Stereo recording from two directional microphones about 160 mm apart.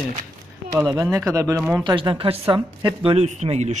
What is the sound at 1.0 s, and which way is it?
Speech, 20° right (ahead or behind).